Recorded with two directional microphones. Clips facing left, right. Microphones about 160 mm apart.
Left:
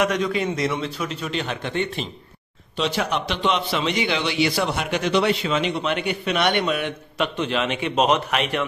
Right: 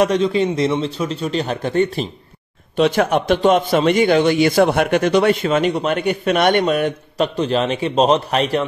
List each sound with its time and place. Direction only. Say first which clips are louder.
0.0 s a man's voice: right 6 dB; 30° right (ahead or behind)
2.8 s a man's voice: right 8 dB; 50° right (ahead or behind); by 8.6 s 35° right (ahead or behind)